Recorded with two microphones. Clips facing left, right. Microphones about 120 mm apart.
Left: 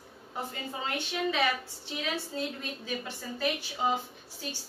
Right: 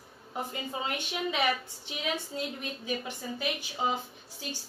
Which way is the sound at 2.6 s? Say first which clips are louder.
Right 2 dB; 15° right (ahead or behind).